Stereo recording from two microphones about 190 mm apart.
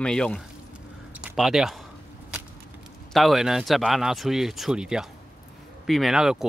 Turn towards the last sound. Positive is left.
turn(degrees=-5)  # may be behind; listen again after turning